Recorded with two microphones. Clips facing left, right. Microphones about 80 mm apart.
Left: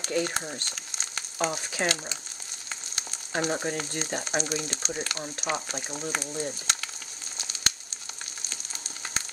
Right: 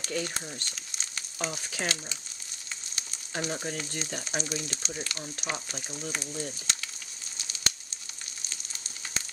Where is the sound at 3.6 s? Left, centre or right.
Left.